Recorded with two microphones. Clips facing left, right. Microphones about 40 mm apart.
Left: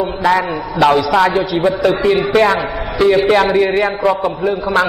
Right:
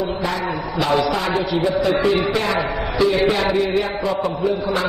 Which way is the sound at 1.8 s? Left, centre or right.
Left.